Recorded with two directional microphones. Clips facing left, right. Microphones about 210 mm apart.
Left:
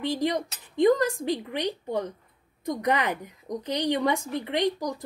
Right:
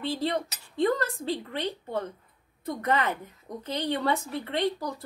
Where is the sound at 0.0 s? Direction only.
15° left (ahead or behind).